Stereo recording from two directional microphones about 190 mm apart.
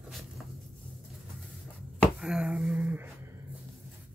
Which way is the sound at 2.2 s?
5° right (ahead or behind).